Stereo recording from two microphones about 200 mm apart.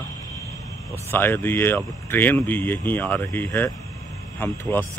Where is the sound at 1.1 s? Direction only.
10° left (ahead or behind).